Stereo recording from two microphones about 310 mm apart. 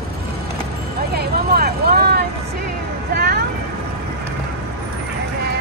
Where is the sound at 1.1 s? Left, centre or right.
Right.